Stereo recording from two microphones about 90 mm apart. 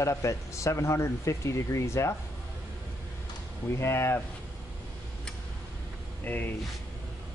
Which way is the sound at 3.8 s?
30° left (ahead or behind).